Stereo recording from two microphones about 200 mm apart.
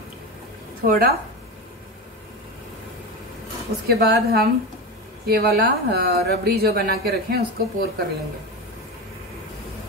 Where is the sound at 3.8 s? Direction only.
50° right (ahead or behind).